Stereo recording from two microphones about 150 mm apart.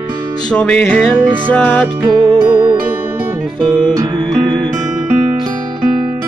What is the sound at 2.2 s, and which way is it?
Music, 30° right (ahead or behind).